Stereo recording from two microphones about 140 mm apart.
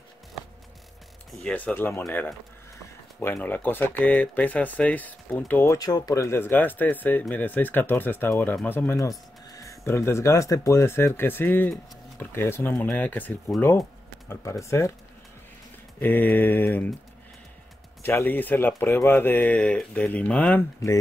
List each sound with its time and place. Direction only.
1.4 s speech: 10° left (ahead or behind)
5.8 s speech: 25° left (ahead or behind)
16.0 s speech: 15° left (ahead or behind)
18.0 s speech: 15° left (ahead or behind)